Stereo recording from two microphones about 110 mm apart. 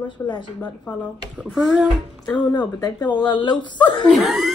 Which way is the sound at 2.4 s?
40° left (ahead or behind).